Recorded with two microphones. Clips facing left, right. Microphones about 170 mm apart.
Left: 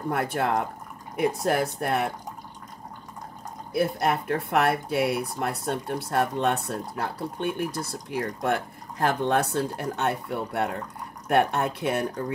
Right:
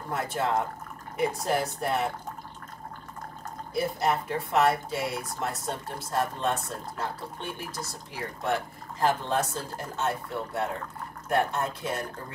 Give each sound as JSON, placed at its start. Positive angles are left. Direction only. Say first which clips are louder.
{"t": 0.1, "sound": "speech", "louder": "left 2 dB", "side_deg": 60}
{"t": 3.7, "sound": "speech", "louder": "left 3 dB", "side_deg": 60}